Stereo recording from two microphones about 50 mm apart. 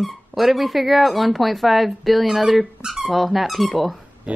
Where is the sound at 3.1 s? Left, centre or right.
Centre.